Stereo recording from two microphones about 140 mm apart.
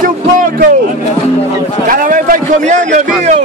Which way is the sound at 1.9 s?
75° right (ahead or behind).